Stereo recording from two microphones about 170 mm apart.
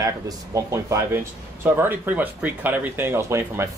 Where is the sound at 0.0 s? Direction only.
20° right (ahead or behind).